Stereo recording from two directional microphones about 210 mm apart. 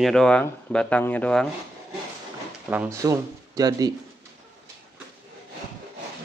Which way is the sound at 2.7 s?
10° right (ahead or behind).